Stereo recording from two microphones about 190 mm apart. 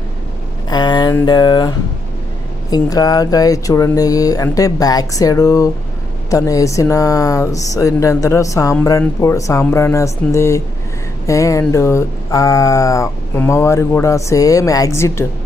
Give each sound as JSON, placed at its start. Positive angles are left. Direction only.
{"t": 0.7, "sound": "speech", "side_deg": 20}